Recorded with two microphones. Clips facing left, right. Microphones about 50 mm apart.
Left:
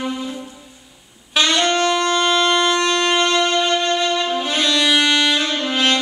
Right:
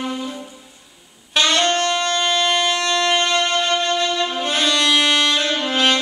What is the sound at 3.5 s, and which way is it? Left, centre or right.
Music, centre.